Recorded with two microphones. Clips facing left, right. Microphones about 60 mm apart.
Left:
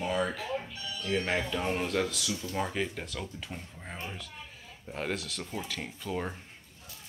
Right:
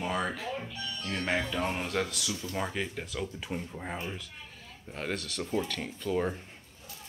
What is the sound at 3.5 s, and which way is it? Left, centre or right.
Speech, centre.